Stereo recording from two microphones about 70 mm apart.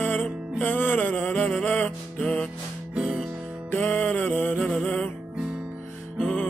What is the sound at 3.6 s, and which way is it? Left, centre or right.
Music, left.